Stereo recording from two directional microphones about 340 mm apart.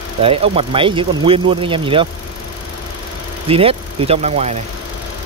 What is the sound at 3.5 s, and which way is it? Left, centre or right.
Speech, centre.